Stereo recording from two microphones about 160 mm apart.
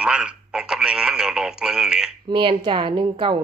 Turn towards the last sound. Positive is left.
turn(degrees=-30)  # may be behind; listen again after turning